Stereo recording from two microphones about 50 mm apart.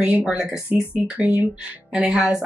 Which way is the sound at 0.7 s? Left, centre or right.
Right.